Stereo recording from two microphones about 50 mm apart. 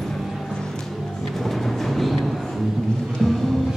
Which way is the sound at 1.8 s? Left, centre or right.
Centre.